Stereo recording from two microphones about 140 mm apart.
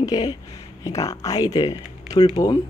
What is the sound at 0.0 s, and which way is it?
Speech, 30° left (ahead or behind).